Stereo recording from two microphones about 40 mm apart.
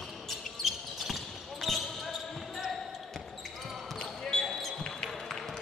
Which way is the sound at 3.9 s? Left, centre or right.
Centre.